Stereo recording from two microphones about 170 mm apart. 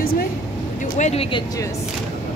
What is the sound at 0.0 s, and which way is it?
Vehicle, 60° left (ahead or behind).